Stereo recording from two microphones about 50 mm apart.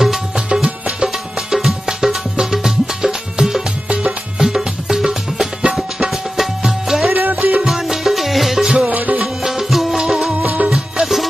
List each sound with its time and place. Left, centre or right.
0.0 s music: centre
7.2 s music: right
7.6 s music: centre
8.8 s music: right
9.2 s music: centre
10.3 s music: right
10.7 s music: centre